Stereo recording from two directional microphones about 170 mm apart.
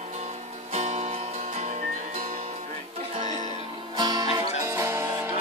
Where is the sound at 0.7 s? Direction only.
40° right (ahead or behind).